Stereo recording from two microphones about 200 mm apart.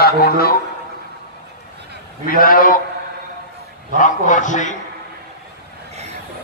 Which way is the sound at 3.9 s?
40° left (ahead or behind).